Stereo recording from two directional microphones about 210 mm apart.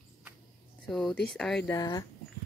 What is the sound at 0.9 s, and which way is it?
Speech, centre (ahead or behind).